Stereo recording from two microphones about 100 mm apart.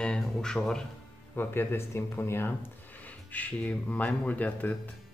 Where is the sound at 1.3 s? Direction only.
20° left (ahead or behind).